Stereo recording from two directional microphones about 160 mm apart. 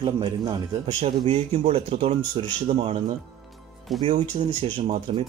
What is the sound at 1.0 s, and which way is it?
Speech, 40° right (ahead or behind).